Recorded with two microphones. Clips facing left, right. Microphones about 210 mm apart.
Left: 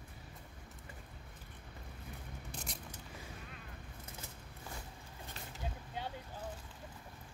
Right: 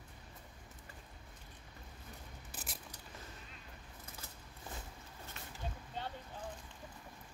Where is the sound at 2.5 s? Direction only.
5° right (ahead or behind).